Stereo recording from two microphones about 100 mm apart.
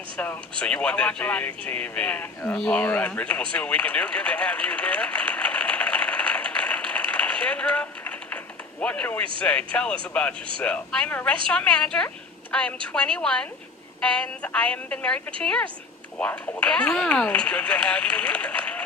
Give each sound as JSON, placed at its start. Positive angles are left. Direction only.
{"t": 0.2, "sound": "speech", "side_deg": 15}
{"t": 3.5, "sound": "a sound", "side_deg": 15}
{"t": 8.8, "sound": "speech", "side_deg": 15}